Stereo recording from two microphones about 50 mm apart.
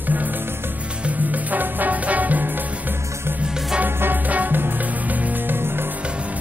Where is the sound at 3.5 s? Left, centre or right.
Centre.